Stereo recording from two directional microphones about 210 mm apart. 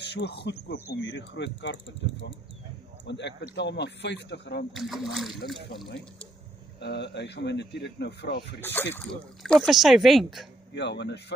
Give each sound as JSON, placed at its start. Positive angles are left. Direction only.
{"t": 0.0, "sound": "speech", "side_deg": 55}
{"t": 4.7, "sound": "speech", "side_deg": 0}
{"t": 6.8, "sound": "speech", "side_deg": 55}
{"t": 8.5, "sound": "speech", "side_deg": 10}
{"t": 10.7, "sound": "speech", "side_deg": 55}